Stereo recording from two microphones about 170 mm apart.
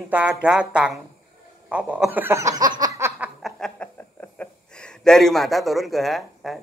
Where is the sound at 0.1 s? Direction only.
5° right (ahead or behind).